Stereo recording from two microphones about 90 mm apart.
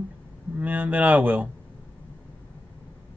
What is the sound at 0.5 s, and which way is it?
Speech, 20° right (ahead or behind).